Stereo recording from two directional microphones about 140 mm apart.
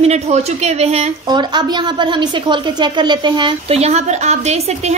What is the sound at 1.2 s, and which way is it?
A woman's voice, 30° right (ahead or behind).